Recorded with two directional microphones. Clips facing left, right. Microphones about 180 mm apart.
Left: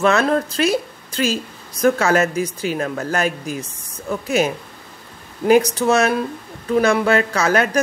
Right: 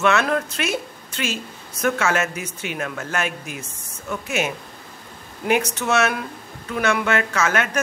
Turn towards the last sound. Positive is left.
turn(degrees=35)  # may be behind; listen again after turning